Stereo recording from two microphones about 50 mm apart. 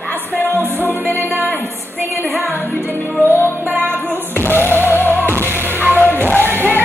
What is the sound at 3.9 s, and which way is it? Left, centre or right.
Music, left.